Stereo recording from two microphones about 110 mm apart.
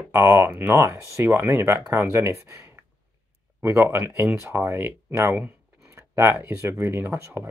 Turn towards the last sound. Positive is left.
turn(degrees=-25)  # may be behind; listen again after turning